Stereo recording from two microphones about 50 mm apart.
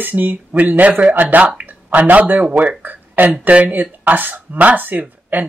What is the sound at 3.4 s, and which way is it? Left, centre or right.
Speech, right.